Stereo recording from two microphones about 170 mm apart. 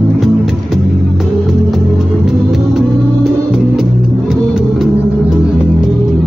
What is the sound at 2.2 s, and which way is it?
Music, centre (ahead or behind).